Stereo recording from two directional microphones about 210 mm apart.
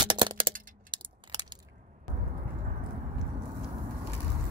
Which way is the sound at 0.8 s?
20° right (ahead or behind).